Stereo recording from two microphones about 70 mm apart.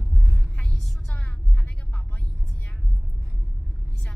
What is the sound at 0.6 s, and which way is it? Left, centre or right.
Music, centre.